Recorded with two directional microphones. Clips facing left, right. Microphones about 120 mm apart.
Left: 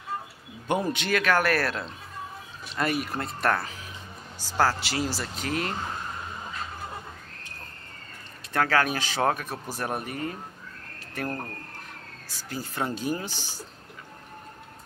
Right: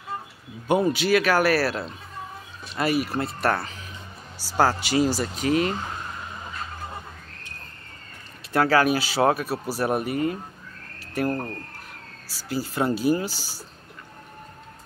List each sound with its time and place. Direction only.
0.7 s speech: 5° right (ahead or behind)
4.4 s speech: 15° right (ahead or behind)
8.5 s speech: 10° right (ahead or behind)
12.3 s speech: 5° right (ahead or behind)